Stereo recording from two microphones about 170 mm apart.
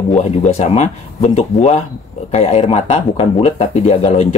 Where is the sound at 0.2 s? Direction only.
40° left (ahead or behind).